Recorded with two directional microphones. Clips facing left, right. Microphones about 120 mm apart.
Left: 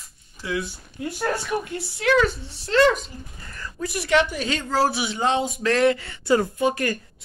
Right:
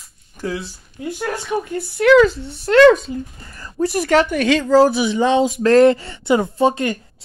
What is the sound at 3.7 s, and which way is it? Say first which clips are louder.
Speech: right 6 dB; 40° right (ahead or behind).